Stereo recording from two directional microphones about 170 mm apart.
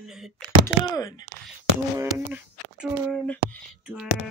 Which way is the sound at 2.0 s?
10° right (ahead or behind).